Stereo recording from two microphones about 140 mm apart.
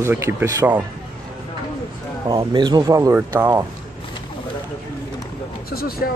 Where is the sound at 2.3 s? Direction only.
30° right (ahead or behind); by 3.6 s 15° right (ahead or behind).